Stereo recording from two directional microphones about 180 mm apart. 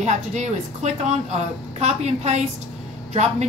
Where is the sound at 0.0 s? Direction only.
40° right (ahead or behind).